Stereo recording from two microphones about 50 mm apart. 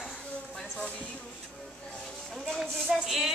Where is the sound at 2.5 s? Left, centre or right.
Centre.